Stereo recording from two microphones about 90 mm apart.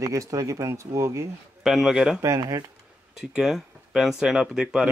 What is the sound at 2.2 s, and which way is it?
Speech, 35° right (ahead or behind).